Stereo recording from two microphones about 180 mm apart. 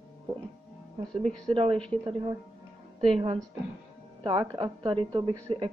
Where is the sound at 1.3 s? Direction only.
5° left (ahead or behind).